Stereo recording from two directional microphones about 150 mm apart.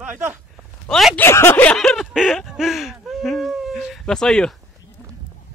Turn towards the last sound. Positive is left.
turn(degrees=5)  # may be behind; listen again after turning